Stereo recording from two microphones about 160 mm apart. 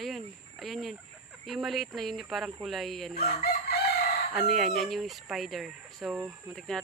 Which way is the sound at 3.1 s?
75° left (ahead or behind).